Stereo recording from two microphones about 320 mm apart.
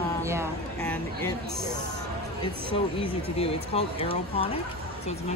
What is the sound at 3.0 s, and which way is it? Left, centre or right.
Speech, centre.